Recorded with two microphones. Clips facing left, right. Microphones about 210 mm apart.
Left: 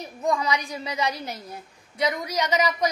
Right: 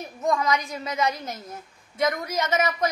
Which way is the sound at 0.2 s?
15° left (ahead or behind).